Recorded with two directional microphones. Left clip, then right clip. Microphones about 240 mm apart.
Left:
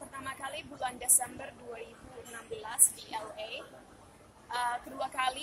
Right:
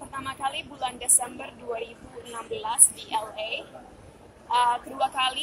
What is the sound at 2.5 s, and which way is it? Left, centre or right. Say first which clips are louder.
Speech: right 8 dB; centre.